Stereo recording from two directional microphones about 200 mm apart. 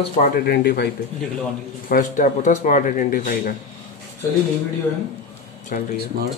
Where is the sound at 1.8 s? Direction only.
45° left (ahead or behind).